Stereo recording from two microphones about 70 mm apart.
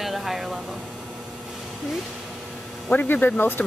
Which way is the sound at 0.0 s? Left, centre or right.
Centre.